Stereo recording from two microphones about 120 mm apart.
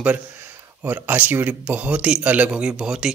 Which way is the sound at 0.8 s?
15° right (ahead or behind).